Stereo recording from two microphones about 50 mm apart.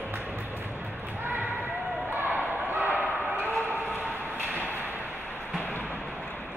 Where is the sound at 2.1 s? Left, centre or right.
Right.